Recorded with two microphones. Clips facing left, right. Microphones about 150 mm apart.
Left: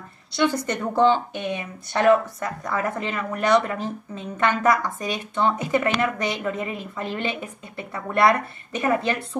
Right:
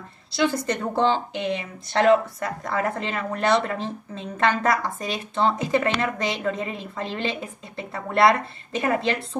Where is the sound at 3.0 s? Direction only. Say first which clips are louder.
Left 2 dB; 30° right (ahead or behind).